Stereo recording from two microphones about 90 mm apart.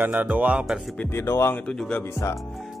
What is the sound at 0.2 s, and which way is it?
Music, 15° right (ahead or behind).